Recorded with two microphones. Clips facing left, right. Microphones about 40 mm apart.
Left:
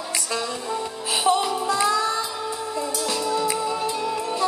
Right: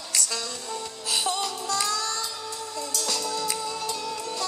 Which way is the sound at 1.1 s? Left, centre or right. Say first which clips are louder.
Left 7 dB; left.